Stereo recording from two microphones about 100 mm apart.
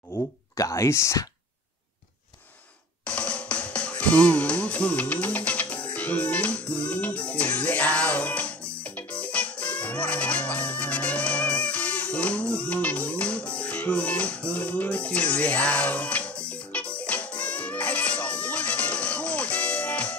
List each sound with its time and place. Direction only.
0.1 s speech: 35° left (ahead or behind)
3.1 s drum: 10° left (ahead or behind)
5.9 s music: 15° left (ahead or behind)